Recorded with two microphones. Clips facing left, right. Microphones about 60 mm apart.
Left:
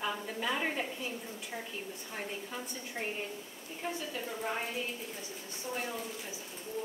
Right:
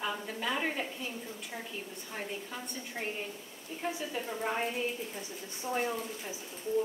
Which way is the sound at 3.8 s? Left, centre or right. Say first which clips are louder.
Right 2 dB; centre.